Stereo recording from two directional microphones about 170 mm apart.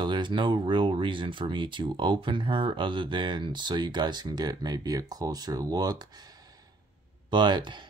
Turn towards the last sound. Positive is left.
turn(degrees=-25)  # may be behind; listen again after turning